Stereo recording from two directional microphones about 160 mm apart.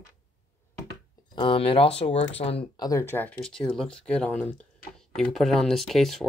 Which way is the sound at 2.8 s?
20° left (ahead or behind).